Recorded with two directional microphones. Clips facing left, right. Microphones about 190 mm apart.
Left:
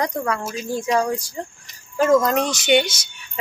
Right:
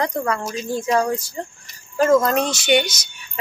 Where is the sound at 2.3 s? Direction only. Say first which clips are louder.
Even; 15° left (ahead or behind).